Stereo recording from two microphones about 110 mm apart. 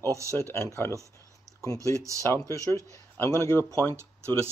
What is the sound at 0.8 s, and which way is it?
Speech, 25° left (ahead or behind).